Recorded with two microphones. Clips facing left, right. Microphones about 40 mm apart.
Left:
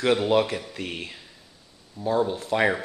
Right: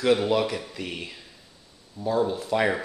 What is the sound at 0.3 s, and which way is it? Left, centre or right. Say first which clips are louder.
Speech: left 2 dB; centre.